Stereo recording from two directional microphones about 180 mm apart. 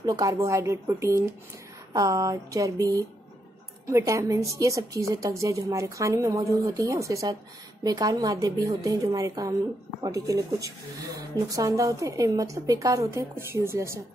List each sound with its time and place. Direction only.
0.0 s a woman's voice: 20° right (ahead or behind)